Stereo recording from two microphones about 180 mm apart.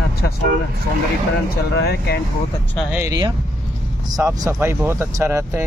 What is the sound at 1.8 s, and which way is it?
Speech, 60° left (ahead or behind).